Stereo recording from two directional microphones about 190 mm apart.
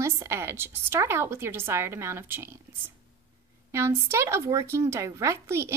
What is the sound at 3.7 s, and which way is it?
Speech, 15° right (ahead or behind).